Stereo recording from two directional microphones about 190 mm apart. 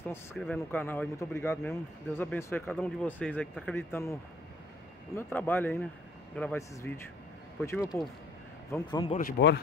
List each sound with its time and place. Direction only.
0.0 s speech: 10° left (ahead or behind)
9.4 s speech: 65° left (ahead or behind)